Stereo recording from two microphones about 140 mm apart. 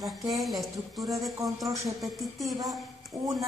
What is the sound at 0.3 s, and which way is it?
A woman's voice, centre (ahead or behind).